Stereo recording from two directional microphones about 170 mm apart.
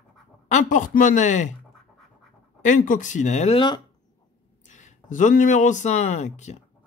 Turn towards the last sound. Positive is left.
turn(degrees=40)  # may be behind; listen again after turning